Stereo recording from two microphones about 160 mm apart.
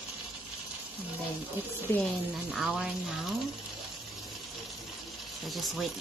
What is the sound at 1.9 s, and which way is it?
Speech, 15° left (ahead or behind).